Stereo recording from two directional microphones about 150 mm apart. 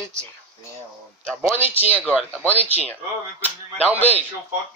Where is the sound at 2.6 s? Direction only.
45° left (ahead or behind).